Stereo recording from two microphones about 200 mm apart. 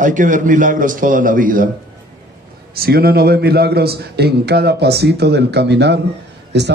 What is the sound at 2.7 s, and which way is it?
A man's voice, 50° right (ahead or behind).